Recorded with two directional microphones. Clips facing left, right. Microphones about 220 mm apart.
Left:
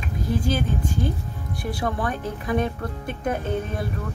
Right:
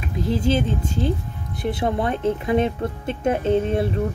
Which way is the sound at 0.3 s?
25° right (ahead or behind).